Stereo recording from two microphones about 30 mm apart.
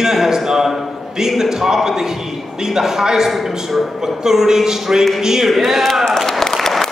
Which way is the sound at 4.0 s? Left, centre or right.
Centre.